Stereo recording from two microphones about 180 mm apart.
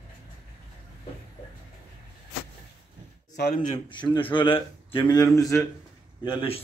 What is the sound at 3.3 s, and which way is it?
Speech, 65° left (ahead or behind).